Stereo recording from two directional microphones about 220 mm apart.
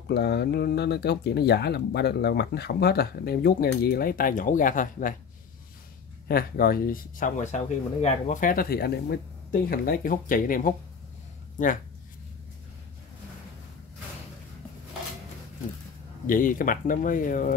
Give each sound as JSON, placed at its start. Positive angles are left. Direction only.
{"t": 0.1, "sound": "speech", "side_deg": 50}
{"t": 6.2, "sound": "speech", "side_deg": 40}
{"t": 16.3, "sound": "speech", "side_deg": 40}